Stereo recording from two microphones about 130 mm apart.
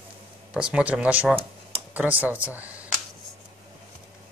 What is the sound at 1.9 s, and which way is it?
Speech, 10° right (ahead or behind).